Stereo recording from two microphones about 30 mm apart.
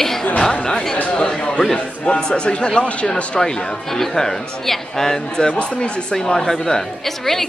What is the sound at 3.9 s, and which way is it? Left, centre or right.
Speech, centre.